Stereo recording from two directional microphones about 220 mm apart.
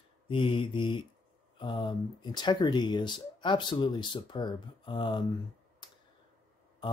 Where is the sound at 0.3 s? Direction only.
25° left (ahead or behind).